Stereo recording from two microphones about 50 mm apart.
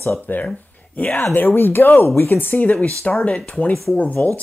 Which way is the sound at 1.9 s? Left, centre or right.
Left.